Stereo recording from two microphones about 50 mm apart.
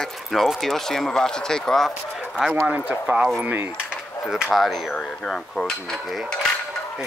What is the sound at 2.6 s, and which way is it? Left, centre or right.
Speech, right.